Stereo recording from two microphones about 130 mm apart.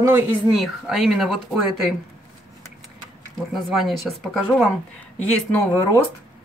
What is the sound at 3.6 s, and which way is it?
Speech, centre (ahead or behind).